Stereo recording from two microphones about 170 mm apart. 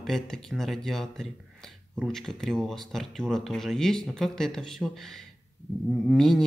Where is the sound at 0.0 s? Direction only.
Centre (ahead or behind).